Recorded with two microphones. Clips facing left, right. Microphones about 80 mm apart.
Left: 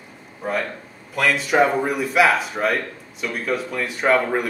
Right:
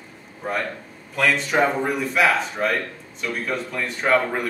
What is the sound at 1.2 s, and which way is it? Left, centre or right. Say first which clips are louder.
Speech: left 2 dB; centre.